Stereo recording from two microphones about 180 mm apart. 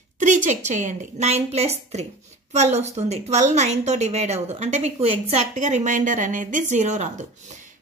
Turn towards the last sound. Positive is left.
turn(degrees=-40)  # may be behind; listen again after turning